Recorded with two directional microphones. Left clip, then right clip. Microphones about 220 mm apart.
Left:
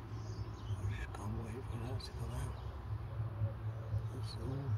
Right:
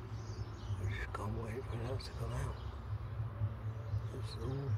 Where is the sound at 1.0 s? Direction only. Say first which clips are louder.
Right 6 dB; 20° right (ahead or behind).